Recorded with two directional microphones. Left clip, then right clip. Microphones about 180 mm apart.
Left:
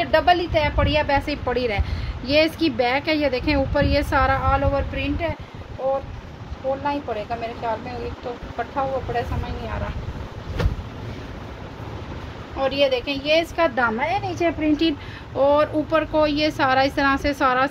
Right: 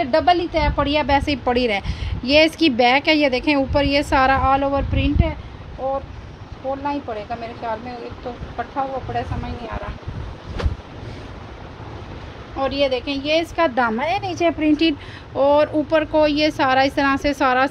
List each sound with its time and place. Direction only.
0.0 s a woman's voice: 40° right (ahead or behind)
6.8 s speech: 45° right (ahead or behind)
12.5 s a woman's voice: 40° right (ahead or behind)
14.8 s speech: 30° right (ahead or behind)